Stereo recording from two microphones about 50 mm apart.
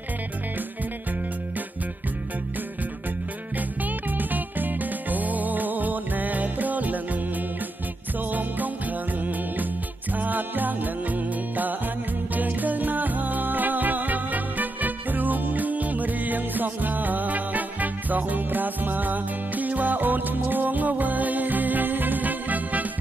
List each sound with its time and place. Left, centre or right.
3.5 s music: right